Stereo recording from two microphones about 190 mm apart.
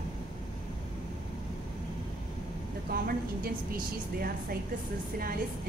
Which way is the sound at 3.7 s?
50° right (ahead or behind).